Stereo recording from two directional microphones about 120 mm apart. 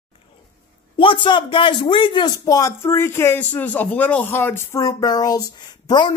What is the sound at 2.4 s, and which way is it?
A man's voice, 25° left (ahead or behind).